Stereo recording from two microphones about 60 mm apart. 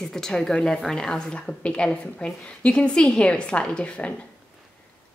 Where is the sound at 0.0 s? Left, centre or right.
Centre.